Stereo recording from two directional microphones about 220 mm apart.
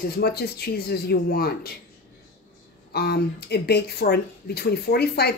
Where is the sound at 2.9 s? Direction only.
45° left (ahead or behind).